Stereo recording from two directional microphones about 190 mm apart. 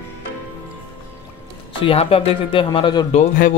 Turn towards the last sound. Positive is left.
turn(degrees=45)  # may be behind; listen again after turning